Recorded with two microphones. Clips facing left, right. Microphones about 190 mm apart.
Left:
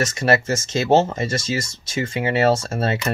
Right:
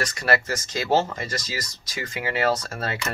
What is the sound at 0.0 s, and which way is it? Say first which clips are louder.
Speech: left 5 dB; 25° left (ahead or behind).